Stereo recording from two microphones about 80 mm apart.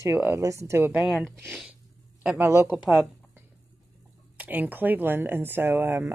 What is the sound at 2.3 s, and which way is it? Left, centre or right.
Speech, right.